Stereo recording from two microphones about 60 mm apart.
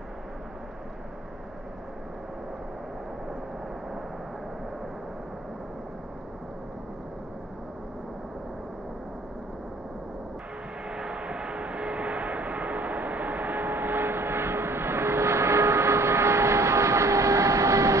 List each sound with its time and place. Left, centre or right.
10.9 s vehicle: centre; by 13.7 s right
13.7 s vehicle: right